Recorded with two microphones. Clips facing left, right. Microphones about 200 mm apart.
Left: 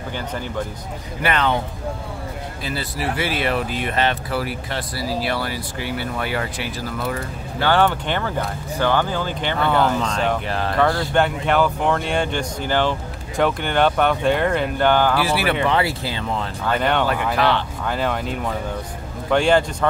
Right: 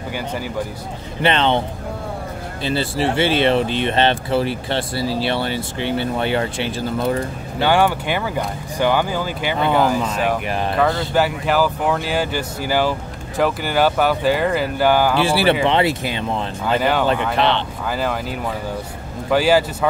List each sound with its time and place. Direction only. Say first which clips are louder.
1.2 s speech: right 3 dB; 25° right (ahead or behind)
2.6 s speech: right 7 dB; 30° right (ahead or behind)
7.6 s speech: right 1 dB; 10° right (ahead or behind)
10.8 s speech: even; centre (ahead or behind)
15.1 s speech: right 4 dB; 30° right (ahead or behind)
17.8 s speech: even; centre (ahead or behind)